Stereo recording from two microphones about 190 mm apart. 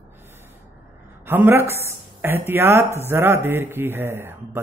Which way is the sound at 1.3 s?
10° right (ahead or behind).